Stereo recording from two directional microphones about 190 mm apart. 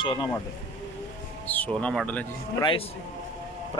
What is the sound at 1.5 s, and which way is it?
Speech, 5° left (ahead or behind).